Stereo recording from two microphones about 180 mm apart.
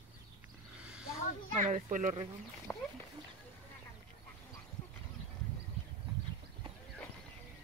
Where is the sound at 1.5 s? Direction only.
45° right (ahead or behind).